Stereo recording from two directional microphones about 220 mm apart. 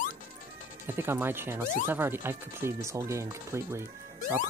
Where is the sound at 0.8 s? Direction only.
10° right (ahead or behind).